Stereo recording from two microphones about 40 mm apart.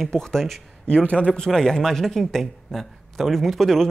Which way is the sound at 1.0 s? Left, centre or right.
Left.